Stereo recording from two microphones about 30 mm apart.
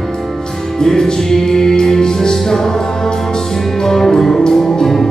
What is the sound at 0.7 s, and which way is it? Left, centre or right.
Music, left.